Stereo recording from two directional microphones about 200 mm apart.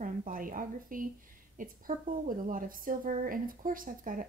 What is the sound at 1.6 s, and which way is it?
A woman's voice, 40° right (ahead or behind).